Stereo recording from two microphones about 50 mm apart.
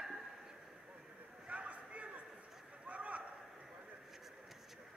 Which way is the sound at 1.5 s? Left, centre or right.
Right.